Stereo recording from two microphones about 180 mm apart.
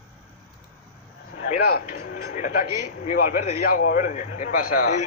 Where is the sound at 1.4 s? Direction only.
50° left (ahead or behind).